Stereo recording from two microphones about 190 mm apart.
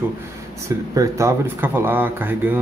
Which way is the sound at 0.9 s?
15° right (ahead or behind).